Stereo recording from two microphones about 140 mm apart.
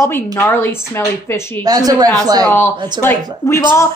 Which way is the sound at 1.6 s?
30° right (ahead or behind).